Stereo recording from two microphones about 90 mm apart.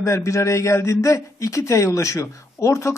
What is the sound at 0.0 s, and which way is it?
Speech, 35° left (ahead or behind).